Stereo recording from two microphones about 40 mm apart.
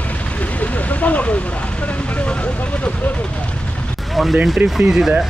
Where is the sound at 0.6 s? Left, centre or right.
Left.